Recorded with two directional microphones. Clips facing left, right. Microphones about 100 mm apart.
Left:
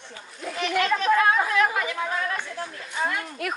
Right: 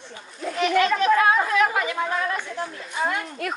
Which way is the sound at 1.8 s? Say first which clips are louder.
Right 3 dB; 15° right (ahead or behind).